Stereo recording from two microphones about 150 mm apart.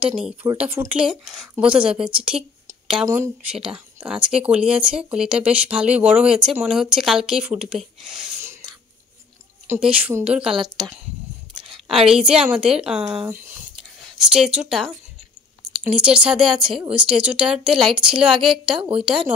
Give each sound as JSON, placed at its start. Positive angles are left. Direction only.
{"t": 0.4, "sound": "speech", "side_deg": -15}
{"t": 0.7, "sound": "speech", "side_deg": -5}
{"t": 3.5, "sound": "speech", "side_deg": -5}
{"t": 9.7, "sound": "speech", "side_deg": -10}
{"t": 13.7, "sound": "a sound", "side_deg": -5}
{"t": 15.9, "sound": "speech", "side_deg": -5}